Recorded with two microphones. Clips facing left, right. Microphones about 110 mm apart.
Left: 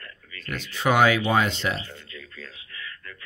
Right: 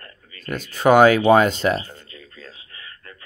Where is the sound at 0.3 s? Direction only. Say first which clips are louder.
Right 5 dB; 40° right (ahead or behind).